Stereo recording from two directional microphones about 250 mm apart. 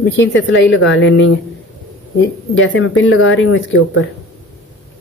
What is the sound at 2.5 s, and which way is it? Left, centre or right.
A woman's voice, left.